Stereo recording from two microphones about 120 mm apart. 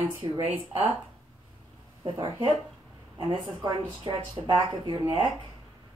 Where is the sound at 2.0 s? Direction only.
40° right (ahead or behind).